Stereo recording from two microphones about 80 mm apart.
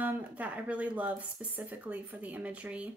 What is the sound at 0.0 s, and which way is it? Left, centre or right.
Speech, centre.